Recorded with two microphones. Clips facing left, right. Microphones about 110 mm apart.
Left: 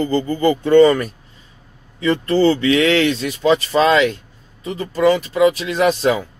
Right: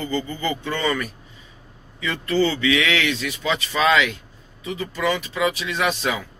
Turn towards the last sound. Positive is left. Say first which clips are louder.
# left 7 dB
turn(degrees=40)  # may be behind; listen again after turning